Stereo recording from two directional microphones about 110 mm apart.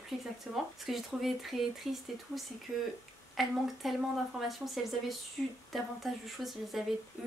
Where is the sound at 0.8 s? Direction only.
Centre (ahead or behind).